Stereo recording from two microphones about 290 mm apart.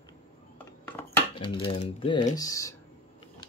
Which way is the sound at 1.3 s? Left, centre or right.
Centre.